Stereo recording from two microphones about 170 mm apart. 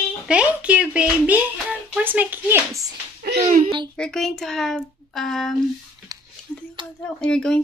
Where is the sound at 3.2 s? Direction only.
65° right (ahead or behind).